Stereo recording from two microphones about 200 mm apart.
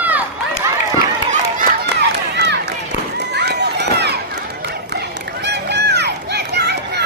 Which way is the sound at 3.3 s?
55° right (ahead or behind).